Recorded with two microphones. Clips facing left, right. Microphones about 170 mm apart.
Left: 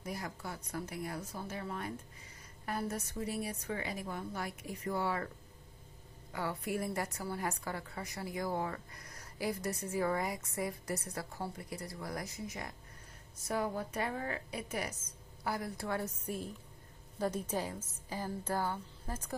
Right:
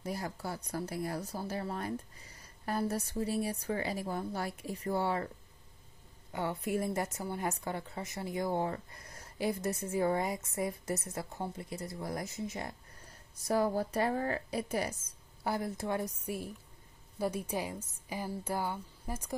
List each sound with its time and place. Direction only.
0.0 s a woman's voice: 30° right (ahead or behind)
6.3 s a woman's voice: 25° right (ahead or behind)